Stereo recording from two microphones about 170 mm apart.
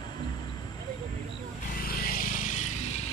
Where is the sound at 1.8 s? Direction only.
60° left (ahead or behind).